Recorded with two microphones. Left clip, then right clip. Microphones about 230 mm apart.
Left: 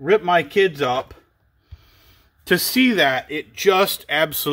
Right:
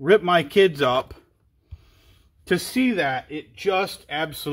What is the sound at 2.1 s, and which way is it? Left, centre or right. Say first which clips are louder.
A man's voice: left 4 dB; centre.